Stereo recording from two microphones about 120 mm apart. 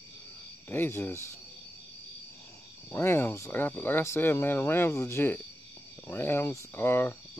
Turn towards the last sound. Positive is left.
turn(degrees=20)  # may be behind; listen again after turning